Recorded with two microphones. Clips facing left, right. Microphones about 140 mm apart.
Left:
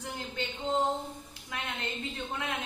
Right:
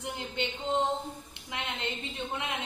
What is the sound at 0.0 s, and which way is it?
A woman's voice, 20° right (ahead or behind).